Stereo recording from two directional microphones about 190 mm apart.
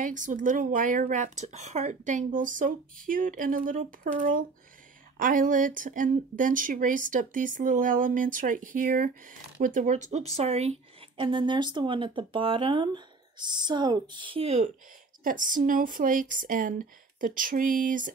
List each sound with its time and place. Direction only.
0.0 s speech: 45° right (ahead or behind)
15.2 s speech: 45° right (ahead or behind)